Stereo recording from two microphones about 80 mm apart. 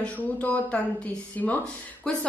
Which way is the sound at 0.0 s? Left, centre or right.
Centre.